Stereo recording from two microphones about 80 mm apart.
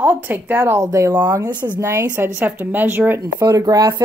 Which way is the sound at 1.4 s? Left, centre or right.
Right.